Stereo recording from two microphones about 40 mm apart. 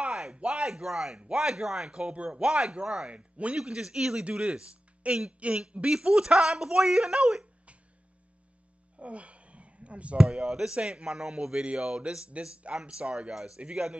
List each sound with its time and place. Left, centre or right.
0.0 s a sound: right
0.5 s speech: centre
2.1 s speech: right
3.1 s speech: right
3.6 s speech: centre
8.9 s speech: right; by 11.6 s centre
12.3 s speech: right